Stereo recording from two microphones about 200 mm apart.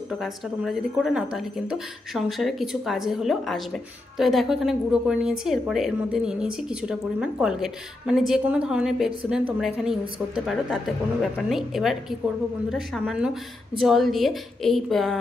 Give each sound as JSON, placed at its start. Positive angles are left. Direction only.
{"t": 0.1, "sound": "a woman's voice", "side_deg": 0}